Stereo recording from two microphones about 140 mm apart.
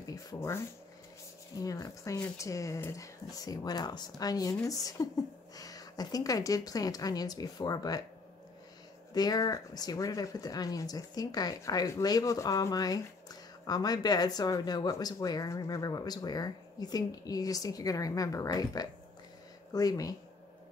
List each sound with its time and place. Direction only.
0.0 s a sound: 25° left (ahead or behind)
1.6 s speech: 25° left (ahead or behind)
9.1 s speech: 25° left (ahead or behind)